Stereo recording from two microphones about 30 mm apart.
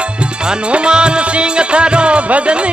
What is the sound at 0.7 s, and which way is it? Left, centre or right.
Music, right.